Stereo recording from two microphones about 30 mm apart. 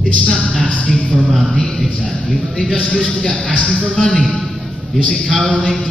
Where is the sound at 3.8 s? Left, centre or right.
Left.